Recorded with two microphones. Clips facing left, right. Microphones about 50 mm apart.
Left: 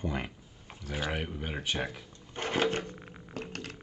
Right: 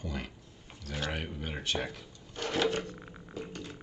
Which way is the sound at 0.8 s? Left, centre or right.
Centre.